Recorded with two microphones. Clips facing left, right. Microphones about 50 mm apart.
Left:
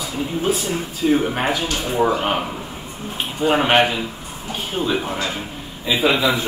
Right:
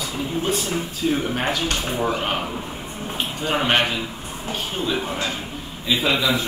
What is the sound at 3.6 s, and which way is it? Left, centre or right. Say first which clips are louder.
Speech: left 3 dB; centre.